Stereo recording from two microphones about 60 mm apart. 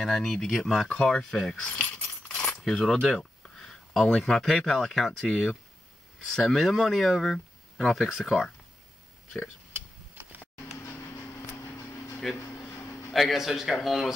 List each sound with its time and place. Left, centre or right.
0.0 s speech: centre
0.8 s speech: centre
2.3 s coin: centre
4.6 s speech: centre
12.2 s speech: centre
12.6 s a sound: left
13.1 s speech: centre